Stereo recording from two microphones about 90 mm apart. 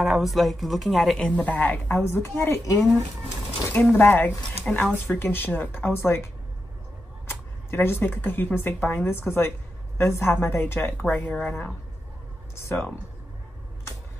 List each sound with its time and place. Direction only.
0.0 s a woman's voice: centre (ahead or behind)
1.2 s a woman's voice: 15° left (ahead or behind)
4.4 s speech: 10° left (ahead or behind)
5.1 s a woman's voice: 20° left (ahead or behind)
7.2 s a woman's voice: 25° left (ahead or behind); by 11.7 s 5° left (ahead or behind)
12.5 s speech: 30° left (ahead or behind)